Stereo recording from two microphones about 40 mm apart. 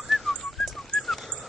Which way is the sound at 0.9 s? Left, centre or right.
Left.